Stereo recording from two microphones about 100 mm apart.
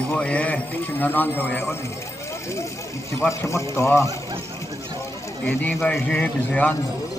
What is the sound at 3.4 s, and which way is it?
Speech, 30° left (ahead or behind).